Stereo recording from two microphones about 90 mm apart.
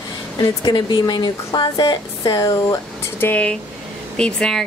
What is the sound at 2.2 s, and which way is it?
Speech, 45° left (ahead or behind).